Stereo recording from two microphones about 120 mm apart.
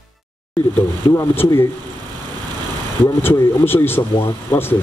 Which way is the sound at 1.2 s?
25° left (ahead or behind).